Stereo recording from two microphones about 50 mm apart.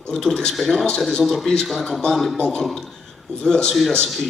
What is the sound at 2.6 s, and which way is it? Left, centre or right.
Speech, centre.